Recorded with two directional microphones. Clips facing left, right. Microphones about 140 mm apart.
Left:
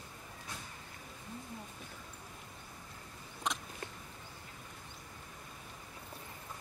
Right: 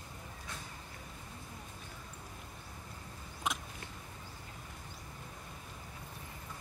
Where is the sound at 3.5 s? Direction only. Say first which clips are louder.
Right 1 dB; 5° right (ahead or behind).